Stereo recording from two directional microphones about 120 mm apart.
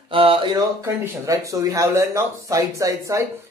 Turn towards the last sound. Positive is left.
turn(degrees=-25)  # may be behind; listen again after turning